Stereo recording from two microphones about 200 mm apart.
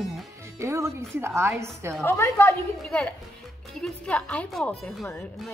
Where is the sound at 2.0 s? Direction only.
15° left (ahead or behind).